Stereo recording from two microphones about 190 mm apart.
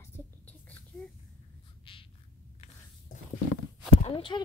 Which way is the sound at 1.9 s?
30° left (ahead or behind).